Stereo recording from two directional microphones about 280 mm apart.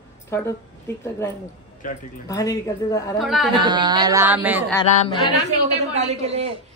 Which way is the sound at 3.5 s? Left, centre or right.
Centre.